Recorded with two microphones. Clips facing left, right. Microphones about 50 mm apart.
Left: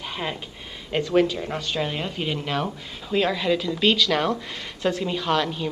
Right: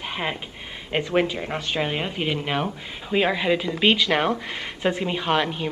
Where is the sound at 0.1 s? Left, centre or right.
Right.